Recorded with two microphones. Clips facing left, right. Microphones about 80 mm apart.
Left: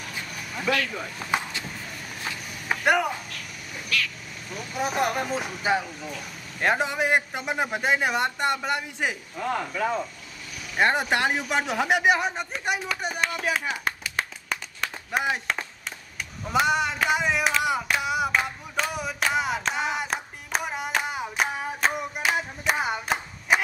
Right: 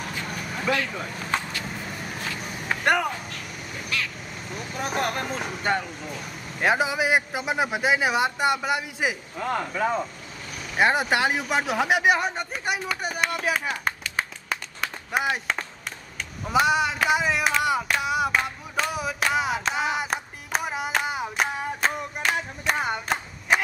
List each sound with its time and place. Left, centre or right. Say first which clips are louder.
0.7 s speech: even; centre
1.3 s vehicle: left 1 dB; centre
2.7 s a sound: even; centre
3.9 s speech: left 2 dB; right
4.7 s speech: left 2 dB; centre
14.1 s clapping: right 1 dB; centre
16.4 s a sound: right 2 dB; centre